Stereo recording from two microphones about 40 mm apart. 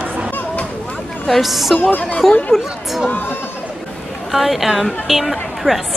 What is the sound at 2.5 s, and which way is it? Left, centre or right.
Speech, centre.